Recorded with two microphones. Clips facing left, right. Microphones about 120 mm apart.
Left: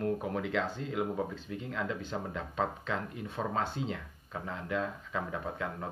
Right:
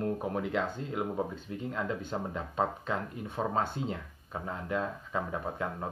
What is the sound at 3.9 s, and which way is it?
Speech, 20° right (ahead or behind).